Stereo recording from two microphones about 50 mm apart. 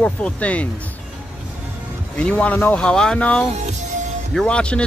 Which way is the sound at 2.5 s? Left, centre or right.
Left.